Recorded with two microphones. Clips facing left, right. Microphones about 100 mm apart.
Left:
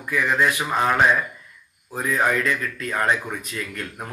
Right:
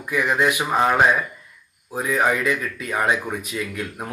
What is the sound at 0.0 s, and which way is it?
Speech, 15° right (ahead or behind).